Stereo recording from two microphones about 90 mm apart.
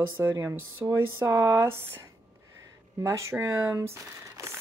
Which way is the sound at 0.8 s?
40° right (ahead or behind).